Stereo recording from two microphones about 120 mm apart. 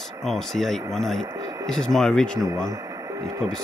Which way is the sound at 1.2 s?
30° right (ahead or behind).